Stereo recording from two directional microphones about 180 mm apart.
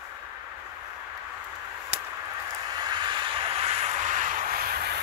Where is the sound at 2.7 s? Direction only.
25° right (ahead or behind).